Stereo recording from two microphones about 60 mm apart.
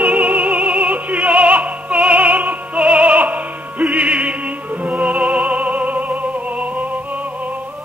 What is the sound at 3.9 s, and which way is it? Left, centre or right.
Music, centre.